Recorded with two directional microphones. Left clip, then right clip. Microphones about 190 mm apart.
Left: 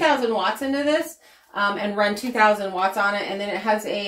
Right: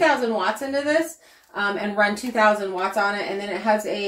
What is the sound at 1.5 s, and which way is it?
Speech, 25° left (ahead or behind).